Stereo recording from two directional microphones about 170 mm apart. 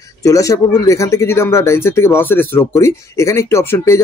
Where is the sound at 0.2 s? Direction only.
20° left (ahead or behind).